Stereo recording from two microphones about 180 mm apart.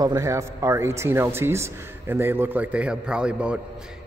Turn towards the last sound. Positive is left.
turn(degrees=-5)  # may be behind; listen again after turning